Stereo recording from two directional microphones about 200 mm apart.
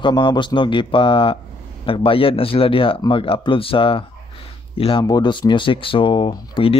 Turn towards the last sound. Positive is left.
turn(degrees=25)  # may be behind; listen again after turning